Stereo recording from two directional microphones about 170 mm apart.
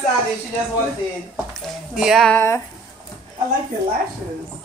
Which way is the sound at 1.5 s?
Centre (ahead or behind).